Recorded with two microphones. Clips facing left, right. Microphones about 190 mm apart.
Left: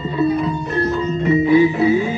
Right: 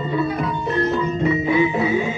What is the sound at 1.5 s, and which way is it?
Music, 35° left (ahead or behind).